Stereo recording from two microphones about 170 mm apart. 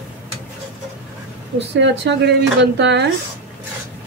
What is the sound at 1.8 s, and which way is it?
A woman's voice, 90° right.